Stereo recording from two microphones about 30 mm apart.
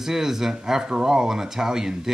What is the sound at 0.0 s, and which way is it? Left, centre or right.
Speech, centre.